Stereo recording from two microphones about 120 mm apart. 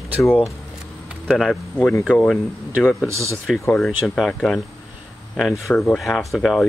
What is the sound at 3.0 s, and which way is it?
Speech, 25° right (ahead or behind).